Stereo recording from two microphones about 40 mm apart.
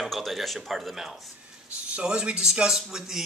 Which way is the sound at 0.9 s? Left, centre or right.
Centre.